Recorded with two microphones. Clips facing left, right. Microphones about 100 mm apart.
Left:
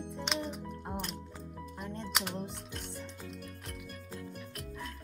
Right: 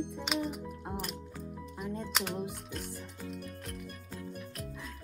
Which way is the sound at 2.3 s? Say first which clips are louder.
Right 3 dB; 10° right (ahead or behind).